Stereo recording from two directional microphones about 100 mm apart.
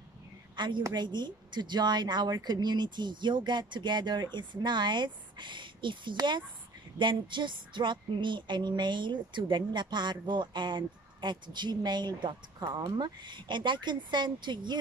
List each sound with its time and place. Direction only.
0.6 s a woman's voice: 50° right (ahead or behind)